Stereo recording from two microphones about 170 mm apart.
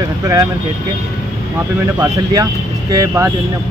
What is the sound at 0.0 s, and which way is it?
Speech, 20° right (ahead or behind).